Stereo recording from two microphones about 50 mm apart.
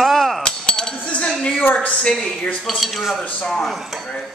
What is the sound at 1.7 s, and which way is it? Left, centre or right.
Speech, centre.